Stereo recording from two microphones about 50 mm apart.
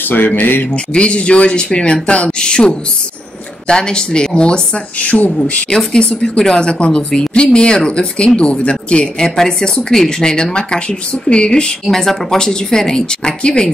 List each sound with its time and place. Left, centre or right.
0.1 s speech: left
0.9 s a woman's voice: left
5.7 s a woman's voice: centre
11.8 s a woman's voice: centre